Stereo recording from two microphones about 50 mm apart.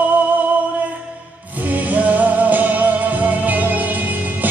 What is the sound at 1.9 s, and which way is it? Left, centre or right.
Music, right.